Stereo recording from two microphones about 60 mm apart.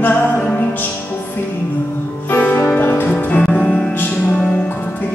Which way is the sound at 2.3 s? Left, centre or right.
Left.